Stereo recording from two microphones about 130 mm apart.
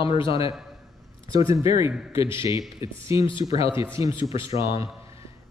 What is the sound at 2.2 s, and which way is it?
Speech, 40° left (ahead or behind).